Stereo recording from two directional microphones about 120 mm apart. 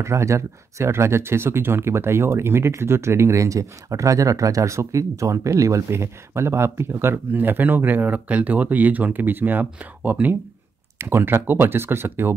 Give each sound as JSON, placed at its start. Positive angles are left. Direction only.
{"t": 0.0, "sound": "speech", "side_deg": -25}